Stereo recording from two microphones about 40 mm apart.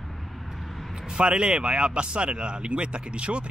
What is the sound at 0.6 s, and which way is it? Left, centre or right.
Vehicle, centre.